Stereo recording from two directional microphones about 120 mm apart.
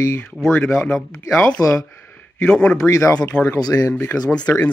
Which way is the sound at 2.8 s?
25° left (ahead or behind).